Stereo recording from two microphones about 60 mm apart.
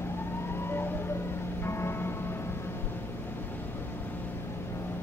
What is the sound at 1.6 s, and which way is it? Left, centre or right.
Music, left.